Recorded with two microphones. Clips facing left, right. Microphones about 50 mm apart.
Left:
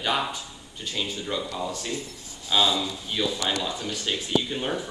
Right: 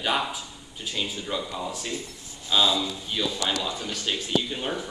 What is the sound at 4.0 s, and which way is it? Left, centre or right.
Speech, right.